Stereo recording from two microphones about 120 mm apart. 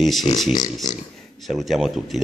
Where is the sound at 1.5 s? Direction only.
Centre (ahead or behind).